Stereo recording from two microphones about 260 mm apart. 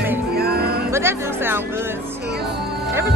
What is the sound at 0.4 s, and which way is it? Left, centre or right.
Music, right.